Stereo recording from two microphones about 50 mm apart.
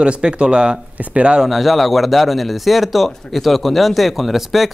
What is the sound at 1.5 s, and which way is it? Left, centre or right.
Speech, centre.